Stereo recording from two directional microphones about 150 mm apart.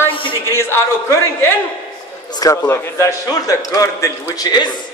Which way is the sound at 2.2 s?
25° left (ahead or behind).